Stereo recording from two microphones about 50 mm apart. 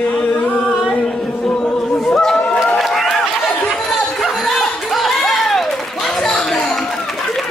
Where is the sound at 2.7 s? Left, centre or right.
Centre.